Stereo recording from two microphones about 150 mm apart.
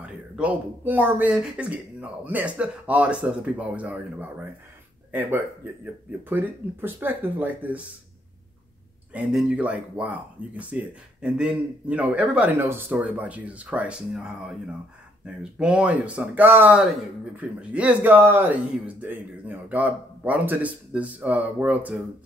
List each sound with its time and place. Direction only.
0.0 s speech: 10° right (ahead or behind)
9.1 s speech: 5° right (ahead or behind)